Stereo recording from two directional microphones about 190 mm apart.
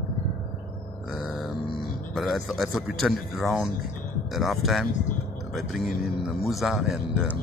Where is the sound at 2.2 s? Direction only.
Centre (ahead or behind).